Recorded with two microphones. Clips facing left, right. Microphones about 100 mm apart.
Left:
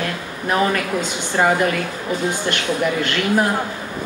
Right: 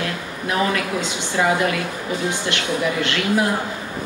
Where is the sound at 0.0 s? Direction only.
45° left (ahead or behind).